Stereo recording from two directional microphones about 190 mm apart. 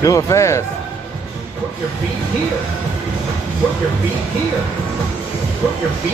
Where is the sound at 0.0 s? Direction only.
15° left (ahead or behind).